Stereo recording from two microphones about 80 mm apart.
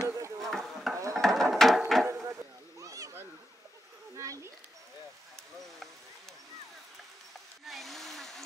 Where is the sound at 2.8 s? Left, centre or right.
Right.